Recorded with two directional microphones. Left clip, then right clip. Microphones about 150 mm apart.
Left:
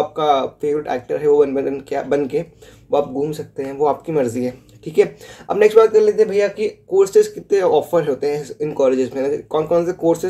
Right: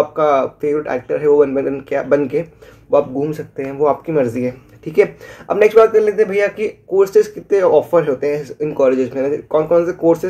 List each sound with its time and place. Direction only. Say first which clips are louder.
0.1 s speech: right 3 dB; 5° left (ahead or behind)
6.3 s speech: right 1 dB; 50° right (ahead or behind)
6.6 s speech: right 1 dB; 5° left (ahead or behind)